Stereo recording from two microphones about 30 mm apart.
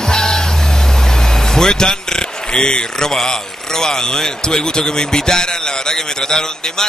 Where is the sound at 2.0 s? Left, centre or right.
Left.